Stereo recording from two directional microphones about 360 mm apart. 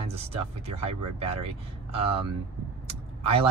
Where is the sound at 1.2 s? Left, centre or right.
Centre.